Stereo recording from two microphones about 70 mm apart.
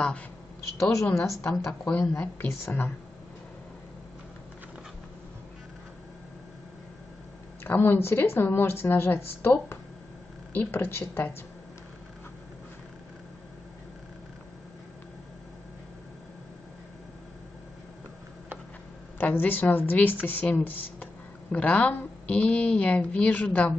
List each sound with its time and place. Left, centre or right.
1.1 s a woman's voice: left
1.7 s speech: left
7.6 s a woman's voice: left
19.1 s a woman's voice: left